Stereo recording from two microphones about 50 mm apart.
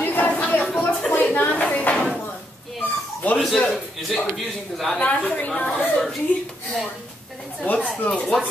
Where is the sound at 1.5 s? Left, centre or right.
Left.